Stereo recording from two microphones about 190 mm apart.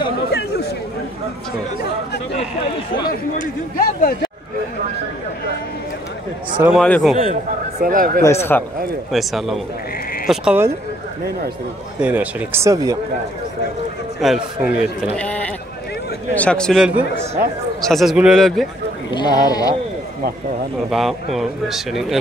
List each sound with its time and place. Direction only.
0.3 s chatter: 60° left (ahead or behind)
3.1 s a man's voice: 45° left (ahead or behind)
6.6 s speech: 5° right (ahead or behind)
7.8 s speech: 50° right (ahead or behind)
8.2 s speech: 15° left (ahead or behind)
9.1 s speech: centre (ahead or behind)
12.0 s speech: 10° right (ahead or behind)
14.2 s speech: centre (ahead or behind)
19.0 s speech: 25° left (ahead or behind)
20.9 s speech: centre (ahead or behind)